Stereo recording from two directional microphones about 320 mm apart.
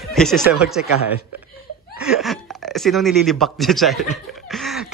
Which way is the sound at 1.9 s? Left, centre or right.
Centre.